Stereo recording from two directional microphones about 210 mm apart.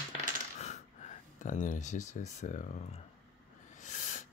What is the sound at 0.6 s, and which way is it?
Speech, 35° left (ahead or behind).